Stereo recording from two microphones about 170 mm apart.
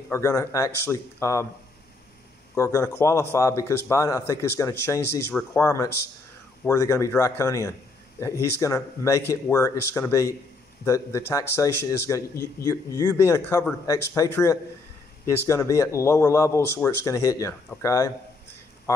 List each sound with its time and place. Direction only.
0.1 s speech: 15° left (ahead or behind)
2.5 s speech: 15° left (ahead or behind)